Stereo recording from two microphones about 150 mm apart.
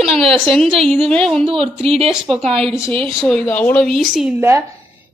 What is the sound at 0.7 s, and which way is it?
Speech, 40° right (ahead or behind).